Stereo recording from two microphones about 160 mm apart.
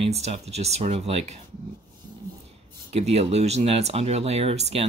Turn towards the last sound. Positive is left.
turn(degrees=-40)  # may be behind; listen again after turning